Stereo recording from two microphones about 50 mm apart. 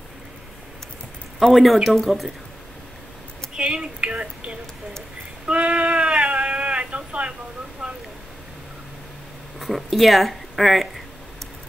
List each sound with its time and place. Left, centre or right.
1.4 s speech: centre
3.5 s a sound: centre
9.6 s speech: centre